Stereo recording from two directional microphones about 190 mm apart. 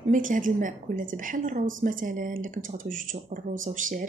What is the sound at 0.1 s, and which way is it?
A woman's voice, 45° right (ahead or behind).